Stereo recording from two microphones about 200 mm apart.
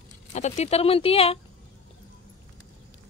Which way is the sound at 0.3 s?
35° left (ahead or behind).